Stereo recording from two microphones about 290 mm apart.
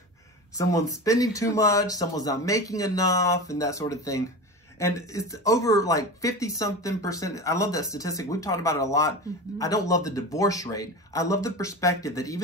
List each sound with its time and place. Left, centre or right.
0.6 s speech: centre